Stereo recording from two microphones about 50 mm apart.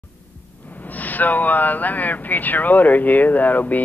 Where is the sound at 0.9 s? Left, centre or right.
Left.